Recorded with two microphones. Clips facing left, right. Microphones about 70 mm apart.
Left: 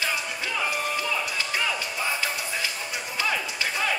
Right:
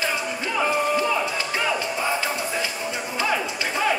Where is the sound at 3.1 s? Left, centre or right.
Right.